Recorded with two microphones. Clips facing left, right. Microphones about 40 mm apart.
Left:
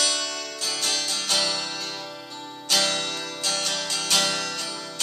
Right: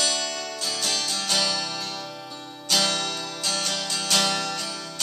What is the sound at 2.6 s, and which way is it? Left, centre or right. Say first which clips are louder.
Music: even; centre.